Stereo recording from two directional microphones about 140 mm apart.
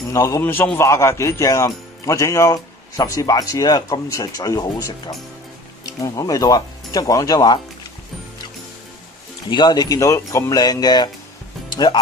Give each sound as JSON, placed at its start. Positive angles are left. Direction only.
{"t": 0.1, "sound": "a man's voice", "side_deg": 20}
{"t": 9.5, "sound": "a man's voice", "side_deg": 30}